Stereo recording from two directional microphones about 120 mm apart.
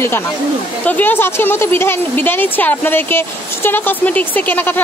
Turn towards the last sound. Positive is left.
turn(degrees=15)  # may be behind; listen again after turning